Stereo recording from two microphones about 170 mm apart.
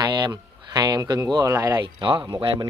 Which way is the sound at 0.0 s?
25° right (ahead or behind).